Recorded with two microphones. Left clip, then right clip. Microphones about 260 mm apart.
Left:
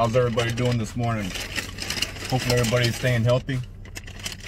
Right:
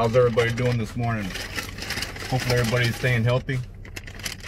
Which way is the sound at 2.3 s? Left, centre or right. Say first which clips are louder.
Even; left.